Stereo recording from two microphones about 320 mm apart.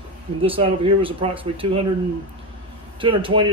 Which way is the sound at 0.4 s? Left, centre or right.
Centre.